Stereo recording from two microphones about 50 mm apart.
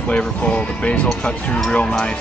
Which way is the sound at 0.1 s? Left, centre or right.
Left.